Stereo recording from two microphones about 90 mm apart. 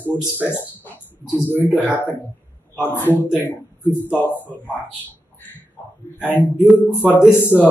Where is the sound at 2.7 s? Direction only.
25° left (ahead or behind).